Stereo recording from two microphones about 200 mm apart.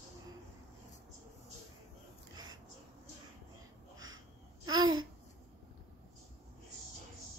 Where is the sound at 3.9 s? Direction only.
75° right (ahead or behind).